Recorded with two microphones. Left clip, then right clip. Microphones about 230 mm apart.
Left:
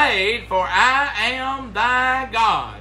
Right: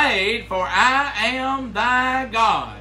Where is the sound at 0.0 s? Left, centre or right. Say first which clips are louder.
Left 1 dB; centre.